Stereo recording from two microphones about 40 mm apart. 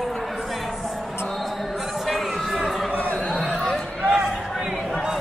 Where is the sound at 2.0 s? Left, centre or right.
Centre.